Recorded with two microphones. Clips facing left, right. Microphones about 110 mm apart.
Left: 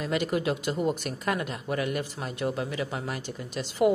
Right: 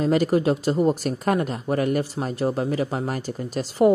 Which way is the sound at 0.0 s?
35° right (ahead or behind).